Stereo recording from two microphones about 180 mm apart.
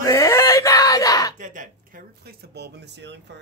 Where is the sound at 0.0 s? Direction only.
15° left (ahead or behind).